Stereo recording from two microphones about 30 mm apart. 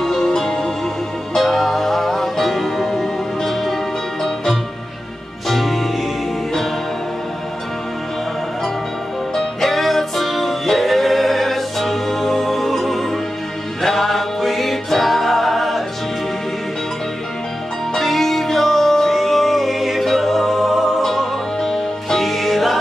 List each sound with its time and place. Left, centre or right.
0.0 s music: centre
1.4 s music: centre
9.3 s music: centre
17.9 s music: centre